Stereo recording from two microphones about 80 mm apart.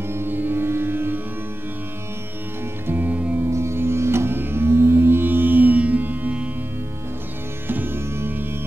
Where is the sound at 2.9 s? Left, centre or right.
Right.